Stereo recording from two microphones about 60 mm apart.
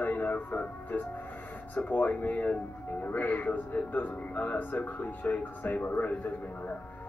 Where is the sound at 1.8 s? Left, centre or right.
Left.